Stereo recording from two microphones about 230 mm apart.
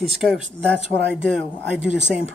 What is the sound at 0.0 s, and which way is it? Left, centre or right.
Speech, centre.